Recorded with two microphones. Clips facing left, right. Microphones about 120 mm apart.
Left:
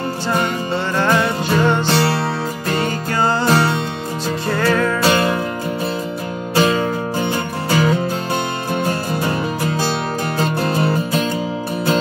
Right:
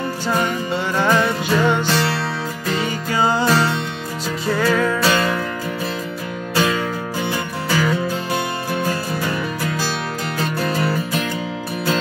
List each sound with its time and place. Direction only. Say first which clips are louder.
1.1 s music: left 1 dB; 15° left (ahead or behind)
1.9 s music: left 3 dB; 30° left (ahead or behind)
3.1 s music: right 1 dB; 10° right (ahead or behind)
3.4 s music: left 2 dB; 25° left (ahead or behind)
4.6 s music: left 1 dB; 5° right (ahead or behind)
5.0 s music: left 2 dB; 25° left (ahead or behind)
6.5 s music: left 4 dB; 35° left (ahead or behind)
9.3 s music: left 3 dB; 40° left (ahead or behind)
10.7 s music: left 3 dB; 25° left (ahead or behind)